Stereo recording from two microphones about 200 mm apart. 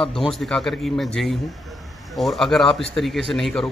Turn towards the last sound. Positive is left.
turn(degrees=0)  # may be behind; listen again after turning